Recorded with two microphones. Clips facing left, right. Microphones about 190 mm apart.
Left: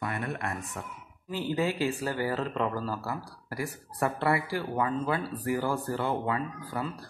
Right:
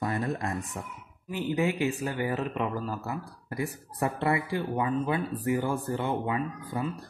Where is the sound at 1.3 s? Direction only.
20° right (ahead or behind).